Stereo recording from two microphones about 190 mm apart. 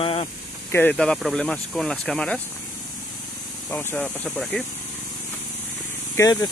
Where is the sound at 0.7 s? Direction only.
10° left (ahead or behind).